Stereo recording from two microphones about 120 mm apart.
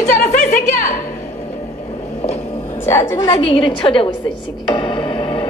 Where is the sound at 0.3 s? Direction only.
90° left.